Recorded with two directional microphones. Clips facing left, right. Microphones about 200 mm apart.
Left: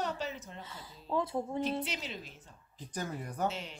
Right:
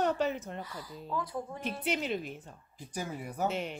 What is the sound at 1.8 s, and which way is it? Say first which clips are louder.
Speech: right 8 dB; 55° right (ahead or behind).